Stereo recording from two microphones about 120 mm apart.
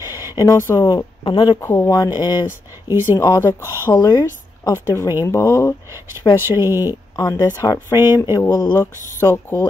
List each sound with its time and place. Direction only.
0.0 s a woman's voice: 30° left (ahead or behind)
0.9 s speech: 40° left (ahead or behind)
1.6 s speech: 20° left (ahead or behind)
2.1 s speech: 35° left (ahead or behind)
5.9 s speech: 20° right (ahead or behind)
7.2 s speech: 30° left (ahead or behind)
9.2 s speech: 15° left (ahead or behind)